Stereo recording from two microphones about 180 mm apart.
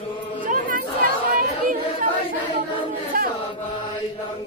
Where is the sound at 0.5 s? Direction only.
50° right (ahead or behind).